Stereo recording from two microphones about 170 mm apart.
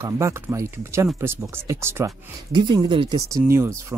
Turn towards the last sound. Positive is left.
turn(degrees=-15)  # may be behind; listen again after turning